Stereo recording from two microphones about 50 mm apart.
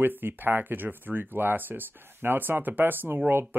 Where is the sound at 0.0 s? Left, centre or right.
Right.